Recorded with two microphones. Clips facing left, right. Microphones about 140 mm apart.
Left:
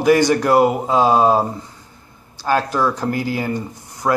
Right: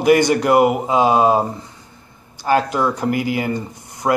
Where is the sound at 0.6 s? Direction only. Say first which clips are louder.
Right 1 dB; 10° right (ahead or behind).